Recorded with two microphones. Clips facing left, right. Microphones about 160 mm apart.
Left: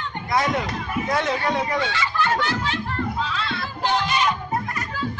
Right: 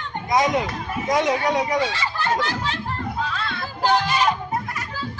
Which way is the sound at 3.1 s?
50° right (ahead or behind).